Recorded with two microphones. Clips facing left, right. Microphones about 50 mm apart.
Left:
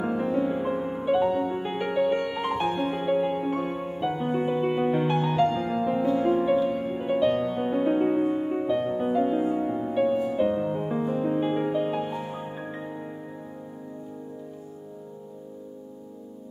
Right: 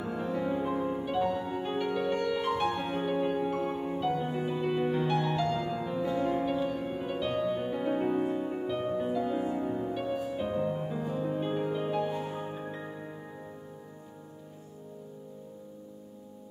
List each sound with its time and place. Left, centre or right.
0.1 s music: left
7.0 s music: left